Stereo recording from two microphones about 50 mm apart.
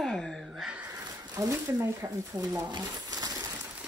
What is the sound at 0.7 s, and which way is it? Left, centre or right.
Speech, right.